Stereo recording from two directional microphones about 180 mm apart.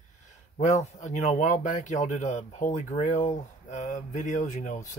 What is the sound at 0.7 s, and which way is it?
Speech, 40° left (ahead or behind).